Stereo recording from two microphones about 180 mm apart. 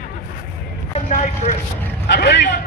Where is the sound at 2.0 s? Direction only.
70° left (ahead or behind).